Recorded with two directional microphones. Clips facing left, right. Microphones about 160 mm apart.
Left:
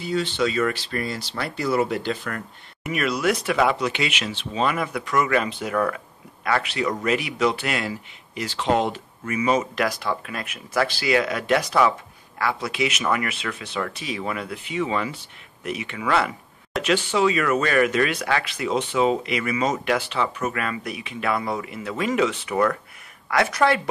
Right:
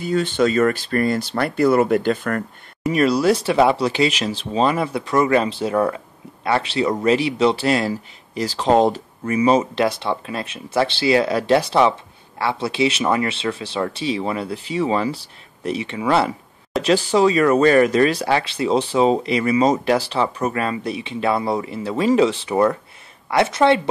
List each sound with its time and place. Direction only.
0.0 s speech: 50° right (ahead or behind)
2.8 s speech: 35° right (ahead or behind)